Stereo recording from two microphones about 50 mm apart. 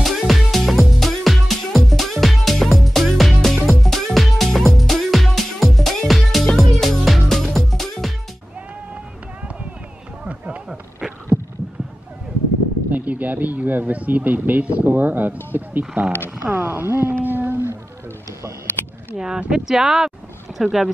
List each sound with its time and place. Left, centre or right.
0.0 s music: centre
10.2 s run: right
11.3 s heart sounds: right
12.9 s speech: right
19.1 s speech: centre